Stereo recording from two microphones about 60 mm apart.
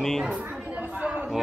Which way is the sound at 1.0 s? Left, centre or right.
Right.